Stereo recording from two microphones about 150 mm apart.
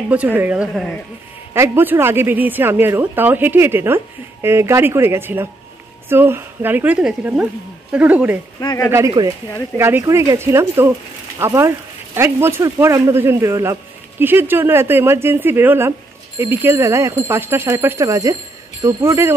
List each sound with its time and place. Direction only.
0.1 s a woman's voice: 10° right (ahead or behind)
8.5 s speech: 25° left (ahead or behind)
9.2 s speech: 30° right (ahead or behind)
9.8 s a woman's voice: 15° right (ahead or behind)